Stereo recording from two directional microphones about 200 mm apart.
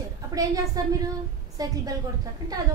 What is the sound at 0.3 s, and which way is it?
A woman's voice, 15° right (ahead or behind).